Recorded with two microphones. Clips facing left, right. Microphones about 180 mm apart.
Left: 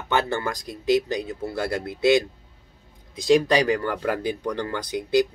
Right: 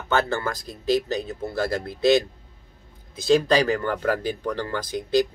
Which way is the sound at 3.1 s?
15° left (ahead or behind).